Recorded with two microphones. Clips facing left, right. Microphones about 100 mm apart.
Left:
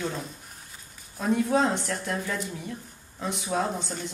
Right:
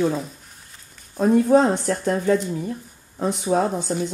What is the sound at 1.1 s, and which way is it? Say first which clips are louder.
Speech: right 8 dB; 40° right (ahead or behind).